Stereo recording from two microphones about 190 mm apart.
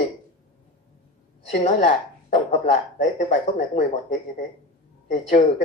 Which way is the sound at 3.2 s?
40° left (ahead or behind).